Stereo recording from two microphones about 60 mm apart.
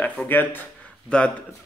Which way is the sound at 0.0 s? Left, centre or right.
Left.